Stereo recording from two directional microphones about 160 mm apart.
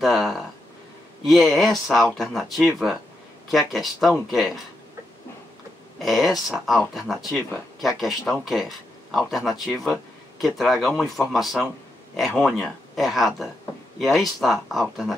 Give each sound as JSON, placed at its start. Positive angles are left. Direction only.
{"t": 0.0, "sound": "a sound", "side_deg": 0}
{"t": 1.2, "sound": "speech", "side_deg": 0}
{"t": 5.9, "sound": "speech", "side_deg": 0}